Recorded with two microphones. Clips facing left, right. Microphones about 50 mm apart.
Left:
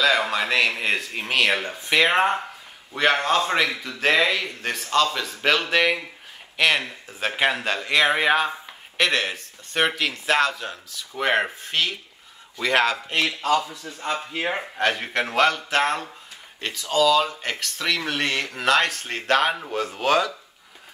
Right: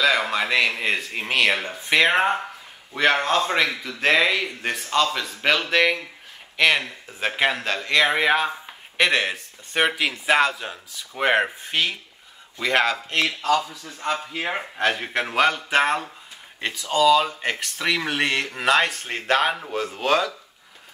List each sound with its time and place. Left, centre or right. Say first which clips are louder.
0.0 s speech: even; centre
11.6 s a sound: right 1 dB; centre
12.5 s speech: even; centre
13.2 s speech: right 1 dB; centre
13.6 s speech: left 1 dB; centre
14.5 s speech: right 1 dB; centre
15.2 s a sound: even; centre
16.6 s speech: right 2 dB; centre